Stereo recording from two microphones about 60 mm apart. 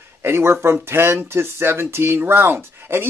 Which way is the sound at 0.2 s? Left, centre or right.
Right.